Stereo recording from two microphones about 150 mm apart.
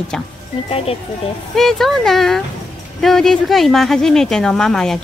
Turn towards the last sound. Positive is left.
turn(degrees=5)  # may be behind; listen again after turning